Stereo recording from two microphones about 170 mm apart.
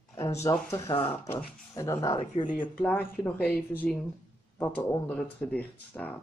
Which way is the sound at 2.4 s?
50° left (ahead or behind).